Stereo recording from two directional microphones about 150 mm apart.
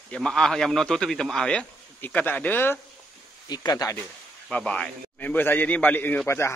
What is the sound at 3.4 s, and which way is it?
Speech, 25° left (ahead or behind).